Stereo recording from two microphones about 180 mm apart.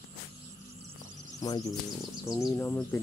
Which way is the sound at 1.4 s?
20° left (ahead or behind).